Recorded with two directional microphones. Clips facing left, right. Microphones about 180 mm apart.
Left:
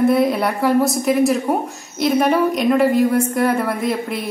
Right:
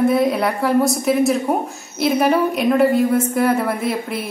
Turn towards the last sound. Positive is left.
turn(degrees=-5)  # may be behind; listen again after turning